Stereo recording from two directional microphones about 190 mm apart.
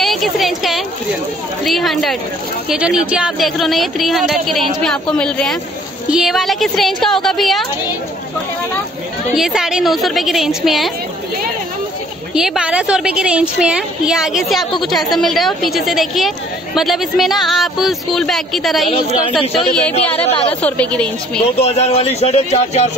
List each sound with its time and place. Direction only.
0.0 s a sound: centre (ahead or behind)
1.6 s a woman's voice: centre (ahead or behind)
9.3 s a woman's voice: centre (ahead or behind)
12.4 s a woman's voice: 5° right (ahead or behind)
20.2 s speech: 30° left (ahead or behind)
20.6 s a woman's voice: 5° left (ahead or behind)
21.5 s speech: 35° left (ahead or behind)